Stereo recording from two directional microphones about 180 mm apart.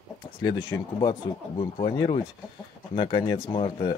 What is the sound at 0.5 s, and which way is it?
Speech, 25° left (ahead or behind).